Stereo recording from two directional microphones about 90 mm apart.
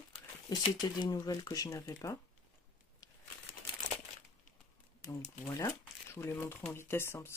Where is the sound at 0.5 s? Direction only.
50° left (ahead or behind).